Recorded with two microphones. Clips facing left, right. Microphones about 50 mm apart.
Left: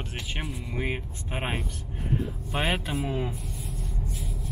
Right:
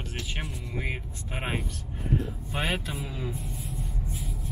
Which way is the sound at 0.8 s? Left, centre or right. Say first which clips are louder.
Left 4 dB; left.